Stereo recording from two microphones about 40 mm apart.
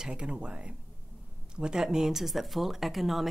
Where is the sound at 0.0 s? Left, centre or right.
Right.